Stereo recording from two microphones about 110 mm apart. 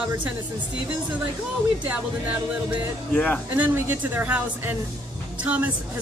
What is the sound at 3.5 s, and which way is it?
A woman's voice, 15° right (ahead or behind).